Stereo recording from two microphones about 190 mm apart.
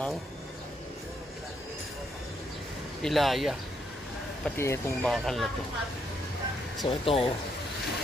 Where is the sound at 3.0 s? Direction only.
Centre (ahead or behind).